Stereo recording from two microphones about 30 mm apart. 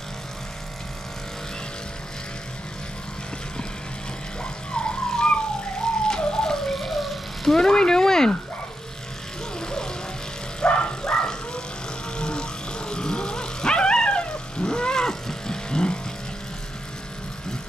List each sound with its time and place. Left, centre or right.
4.4 s car alarm: left
6.0 s a sound: left
6.7 s dog: centre
7.4 s speech: centre
9.6 s vehicle: left
10.6 s vehicle: left
11.0 s bow-wow: left
12.2 s dog: left